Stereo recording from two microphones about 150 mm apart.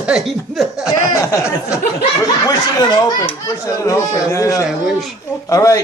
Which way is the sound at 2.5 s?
25° left (ahead or behind).